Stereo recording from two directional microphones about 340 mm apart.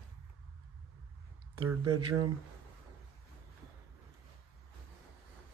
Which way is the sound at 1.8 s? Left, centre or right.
Right.